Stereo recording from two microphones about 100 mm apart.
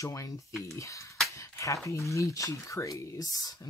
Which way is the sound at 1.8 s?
30° left (ahead or behind).